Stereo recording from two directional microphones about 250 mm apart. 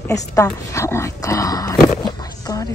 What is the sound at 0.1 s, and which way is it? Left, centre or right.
A woman's voice, centre.